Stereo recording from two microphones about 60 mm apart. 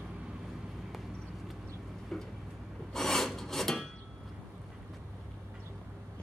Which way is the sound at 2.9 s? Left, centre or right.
Centre.